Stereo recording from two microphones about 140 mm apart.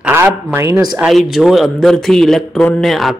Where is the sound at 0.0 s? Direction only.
15° right (ahead or behind).